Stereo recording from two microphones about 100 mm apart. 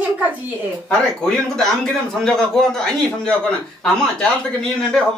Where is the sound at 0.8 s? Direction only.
10° left (ahead or behind).